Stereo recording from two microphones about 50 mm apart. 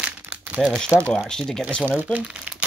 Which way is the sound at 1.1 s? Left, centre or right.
Centre.